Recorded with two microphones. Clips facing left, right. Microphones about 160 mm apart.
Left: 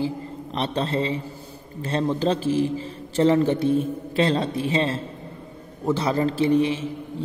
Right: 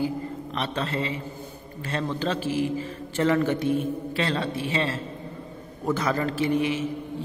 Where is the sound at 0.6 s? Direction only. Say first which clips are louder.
Left 4 dB; 35° left (ahead or behind).